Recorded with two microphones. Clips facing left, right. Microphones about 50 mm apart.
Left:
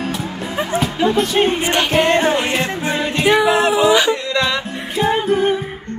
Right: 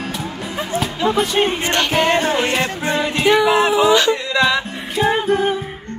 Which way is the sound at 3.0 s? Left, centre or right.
Centre.